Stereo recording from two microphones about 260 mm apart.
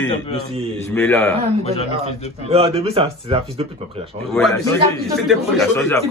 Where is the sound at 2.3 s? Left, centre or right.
Right.